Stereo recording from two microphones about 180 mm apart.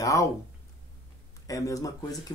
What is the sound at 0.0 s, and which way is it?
Speech, 20° left (ahead or behind).